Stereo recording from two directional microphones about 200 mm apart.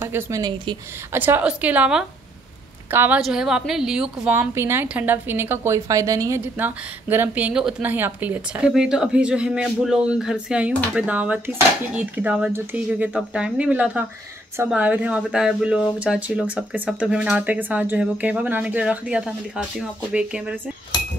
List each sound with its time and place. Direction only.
0.0 s speech: 15° right (ahead or behind)
1.1 s a woman's voice: 10° right (ahead or behind)